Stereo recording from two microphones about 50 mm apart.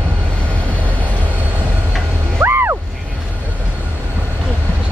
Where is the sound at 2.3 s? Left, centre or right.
Right.